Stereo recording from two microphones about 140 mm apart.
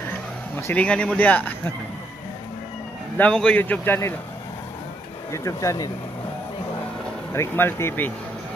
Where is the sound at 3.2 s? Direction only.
5° left (ahead or behind).